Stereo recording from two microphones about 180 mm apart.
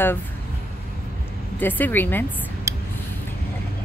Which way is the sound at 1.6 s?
10° left (ahead or behind).